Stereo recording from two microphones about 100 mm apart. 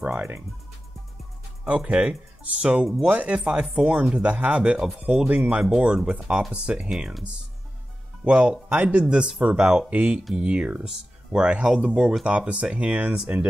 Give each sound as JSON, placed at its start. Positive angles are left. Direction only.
{"t": 0.0, "sound": "speech", "side_deg": -25}
{"t": 1.6, "sound": "speech", "side_deg": -10}
{"t": 8.3, "sound": "speech", "side_deg": -10}